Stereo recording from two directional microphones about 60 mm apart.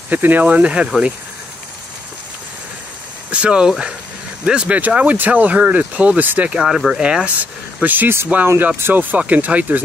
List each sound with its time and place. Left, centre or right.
0.1 s speech: right
3.3 s speech: centre
4.7 s speech: right
6.5 s speech: centre
7.8 s speech: right
9.2 s speech: right